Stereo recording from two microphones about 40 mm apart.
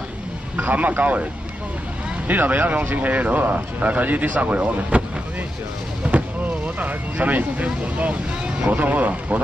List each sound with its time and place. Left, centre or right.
0.6 s speech: right
2.2 s speech: right
6.0 s speech: right